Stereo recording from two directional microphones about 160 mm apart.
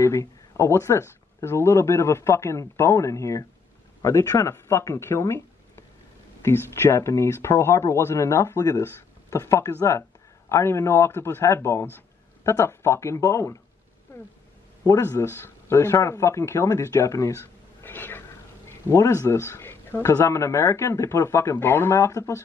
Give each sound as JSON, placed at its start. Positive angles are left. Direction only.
{"t": 0.0, "sound": "speech", "side_deg": 20}
{"t": 6.4, "sound": "speech", "side_deg": 15}
{"t": 14.9, "sound": "speech", "side_deg": 15}
{"t": 17.8, "sound": "a sound", "side_deg": 10}
{"t": 18.9, "sound": "speech", "side_deg": 20}